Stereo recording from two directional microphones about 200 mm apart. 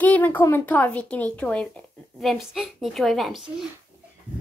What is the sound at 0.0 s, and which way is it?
A child's voice, 10° left (ahead or behind).